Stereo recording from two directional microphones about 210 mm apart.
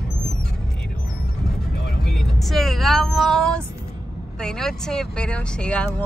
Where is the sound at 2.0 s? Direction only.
Centre (ahead or behind).